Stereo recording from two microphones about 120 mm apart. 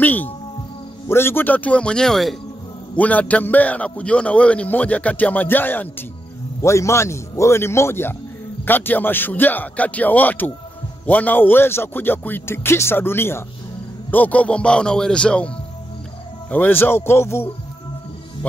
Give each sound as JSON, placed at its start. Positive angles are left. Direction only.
{"t": 0.0, "sound": "a man's voice", "side_deg": 15}